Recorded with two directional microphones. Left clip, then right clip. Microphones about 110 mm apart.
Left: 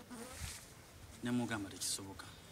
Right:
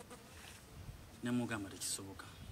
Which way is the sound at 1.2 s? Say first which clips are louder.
Left 1 dB; 5° left (ahead or behind).